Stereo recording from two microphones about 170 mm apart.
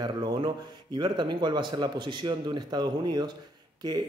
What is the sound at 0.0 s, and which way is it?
Speech, 25° right (ahead or behind).